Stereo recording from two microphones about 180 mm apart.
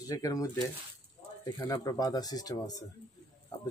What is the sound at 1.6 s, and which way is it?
Speech, 20° left (ahead or behind).